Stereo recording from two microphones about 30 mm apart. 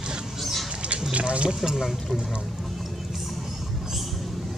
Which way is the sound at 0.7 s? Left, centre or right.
Right.